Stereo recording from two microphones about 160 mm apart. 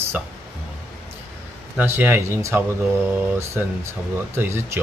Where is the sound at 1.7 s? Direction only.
15° right (ahead or behind).